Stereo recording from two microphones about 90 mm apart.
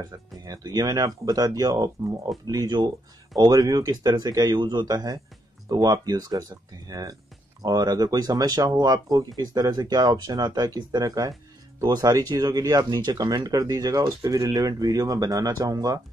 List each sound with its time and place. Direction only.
0.5 s speech: 45° right (ahead or behind)